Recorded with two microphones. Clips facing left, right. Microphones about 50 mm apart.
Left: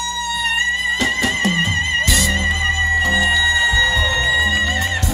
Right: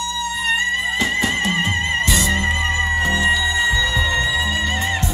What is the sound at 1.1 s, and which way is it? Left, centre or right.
Music, right.